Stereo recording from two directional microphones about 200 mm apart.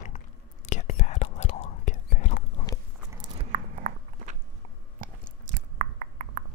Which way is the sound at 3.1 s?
25° right (ahead or behind).